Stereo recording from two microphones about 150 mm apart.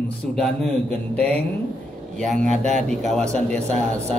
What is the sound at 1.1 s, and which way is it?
Speech, 10° left (ahead or behind).